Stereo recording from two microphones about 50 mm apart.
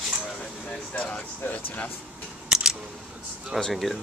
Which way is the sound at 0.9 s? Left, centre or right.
Left.